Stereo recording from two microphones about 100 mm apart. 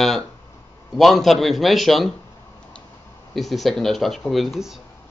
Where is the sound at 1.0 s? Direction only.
Centre (ahead or behind).